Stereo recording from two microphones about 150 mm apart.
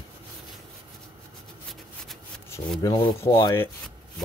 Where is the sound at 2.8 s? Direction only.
25° left (ahead or behind).